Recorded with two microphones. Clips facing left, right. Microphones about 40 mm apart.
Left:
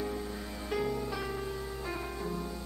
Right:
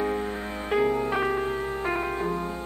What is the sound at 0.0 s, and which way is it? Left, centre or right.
Music, right.